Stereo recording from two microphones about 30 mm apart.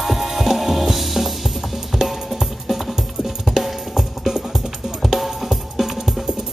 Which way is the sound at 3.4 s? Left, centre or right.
Centre.